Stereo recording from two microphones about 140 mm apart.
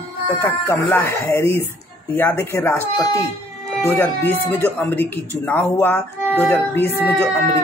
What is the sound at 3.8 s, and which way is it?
Speech, 15° left (ahead or behind).